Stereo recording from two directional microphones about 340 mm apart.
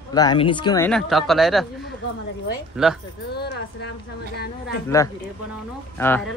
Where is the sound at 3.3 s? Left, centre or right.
Left.